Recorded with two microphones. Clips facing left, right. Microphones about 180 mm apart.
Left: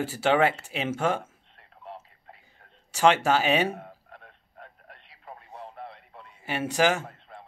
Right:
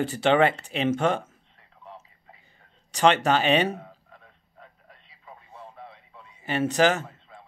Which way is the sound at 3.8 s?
60° left (ahead or behind).